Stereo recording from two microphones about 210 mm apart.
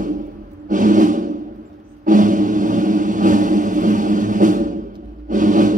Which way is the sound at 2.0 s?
40° right (ahead or behind).